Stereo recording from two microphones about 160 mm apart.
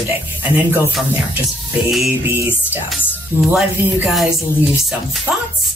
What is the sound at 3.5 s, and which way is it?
Speech, centre (ahead or behind).